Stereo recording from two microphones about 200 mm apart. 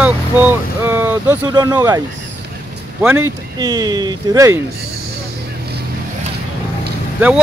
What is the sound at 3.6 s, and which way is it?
Speech, 20° right (ahead or behind).